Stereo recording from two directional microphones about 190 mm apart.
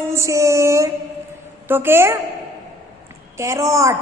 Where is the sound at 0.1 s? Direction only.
15° right (ahead or behind).